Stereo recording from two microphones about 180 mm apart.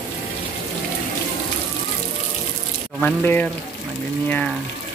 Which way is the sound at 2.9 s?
10° left (ahead or behind).